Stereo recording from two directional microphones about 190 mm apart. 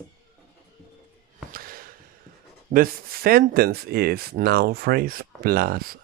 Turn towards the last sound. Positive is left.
turn(degrees=-50)  # may be behind; listen again after turning